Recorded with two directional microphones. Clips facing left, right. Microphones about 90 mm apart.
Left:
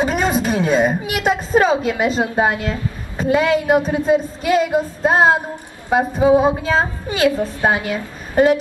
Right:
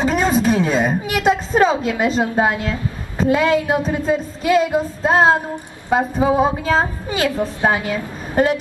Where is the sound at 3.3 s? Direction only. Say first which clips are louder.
Left 3 dB; 10° left (ahead or behind).